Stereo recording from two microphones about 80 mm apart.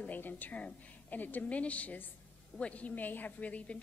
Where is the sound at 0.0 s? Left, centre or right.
Left.